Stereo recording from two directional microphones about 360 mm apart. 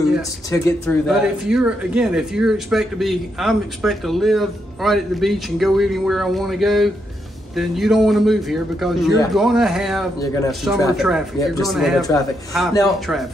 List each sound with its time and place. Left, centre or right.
0.5 s speech: centre